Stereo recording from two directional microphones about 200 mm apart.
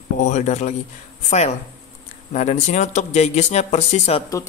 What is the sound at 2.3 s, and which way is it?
Speech, 35° left (ahead or behind).